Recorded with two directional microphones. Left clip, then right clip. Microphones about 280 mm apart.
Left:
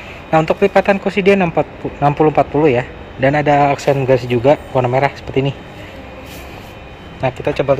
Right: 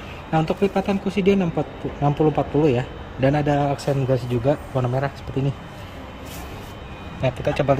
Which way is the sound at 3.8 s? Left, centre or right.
Centre.